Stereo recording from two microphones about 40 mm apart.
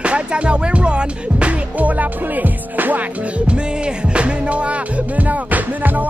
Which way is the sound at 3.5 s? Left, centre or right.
Right.